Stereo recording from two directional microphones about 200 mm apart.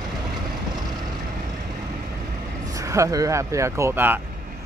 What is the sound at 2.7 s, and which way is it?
Speech, 15° right (ahead or behind).